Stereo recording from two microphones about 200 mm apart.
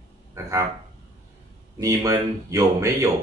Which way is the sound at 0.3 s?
15° right (ahead or behind).